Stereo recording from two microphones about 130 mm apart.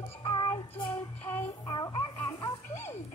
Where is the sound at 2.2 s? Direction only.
25° left (ahead or behind).